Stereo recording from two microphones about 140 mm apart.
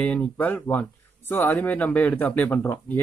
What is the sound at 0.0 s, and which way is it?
Speech, 10° left (ahead or behind).